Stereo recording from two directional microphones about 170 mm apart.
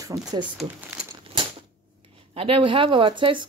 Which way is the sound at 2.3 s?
35° right (ahead or behind).